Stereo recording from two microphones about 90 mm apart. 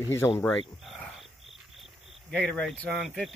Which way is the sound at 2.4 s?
10° left (ahead or behind).